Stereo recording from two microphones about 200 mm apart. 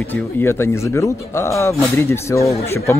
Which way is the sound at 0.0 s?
10° left (ahead or behind).